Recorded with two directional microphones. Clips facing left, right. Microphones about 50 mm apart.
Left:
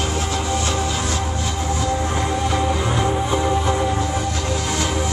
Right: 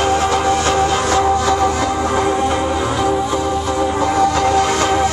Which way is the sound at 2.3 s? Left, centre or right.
Centre.